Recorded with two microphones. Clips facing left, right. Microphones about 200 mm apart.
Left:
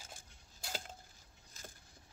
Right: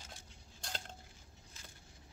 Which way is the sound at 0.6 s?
5° left (ahead or behind).